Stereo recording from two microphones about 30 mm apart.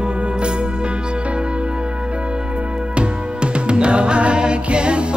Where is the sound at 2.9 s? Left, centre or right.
Right.